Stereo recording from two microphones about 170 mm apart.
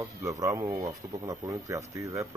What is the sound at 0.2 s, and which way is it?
Speech, 20° right (ahead or behind).